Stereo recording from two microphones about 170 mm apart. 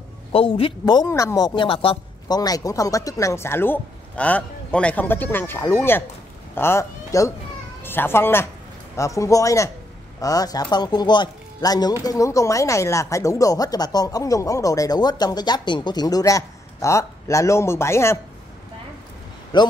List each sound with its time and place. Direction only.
0.3 s speech: 35° left (ahead or behind); by 18.2 s 15° left (ahead or behind)
19.5 s speech: 25° left (ahead or behind)